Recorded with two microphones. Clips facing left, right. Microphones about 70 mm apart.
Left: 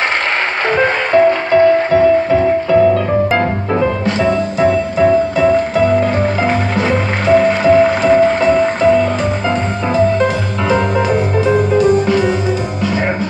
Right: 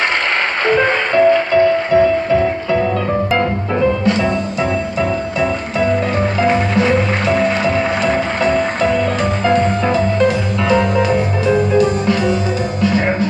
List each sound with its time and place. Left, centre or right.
1.1 s music: left
4.0 s music: left
6.8 s music: left
10.1 s music: left